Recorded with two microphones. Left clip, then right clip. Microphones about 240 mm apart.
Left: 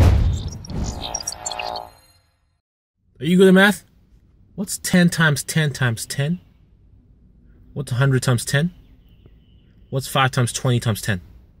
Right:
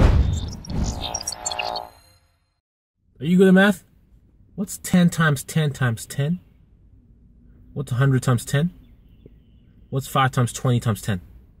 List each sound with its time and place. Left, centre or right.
0.3 s music: centre
3.2 s speech: centre
7.7 s speech: centre
9.8 s speech: centre